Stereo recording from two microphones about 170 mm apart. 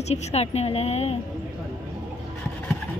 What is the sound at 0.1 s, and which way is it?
A woman's voice, 40° left (ahead or behind).